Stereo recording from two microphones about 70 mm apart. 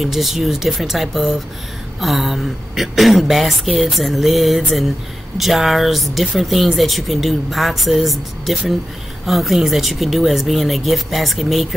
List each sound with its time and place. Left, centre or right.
0.0 s speech: centre